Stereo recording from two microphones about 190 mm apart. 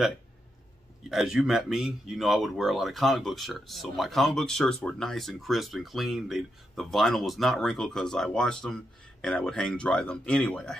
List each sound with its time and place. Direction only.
1.0 s speech: centre (ahead or behind)